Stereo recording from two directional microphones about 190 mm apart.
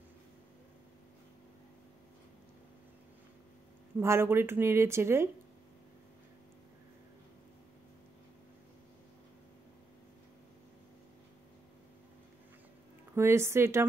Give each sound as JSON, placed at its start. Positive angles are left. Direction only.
{"t": 4.0, "sound": "speech", "side_deg": -15}
{"t": 13.1, "sound": "speech", "side_deg": -15}